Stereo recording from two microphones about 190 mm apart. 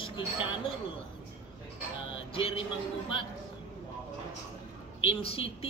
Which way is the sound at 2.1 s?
30° left (ahead or behind).